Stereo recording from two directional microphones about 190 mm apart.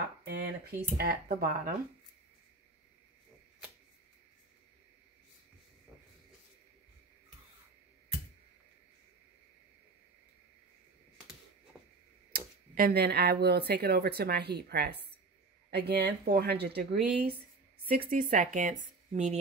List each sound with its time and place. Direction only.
0.3 s a woman's voice: 60° right (ahead or behind)
12.3 s a woman's voice: 55° right (ahead or behind)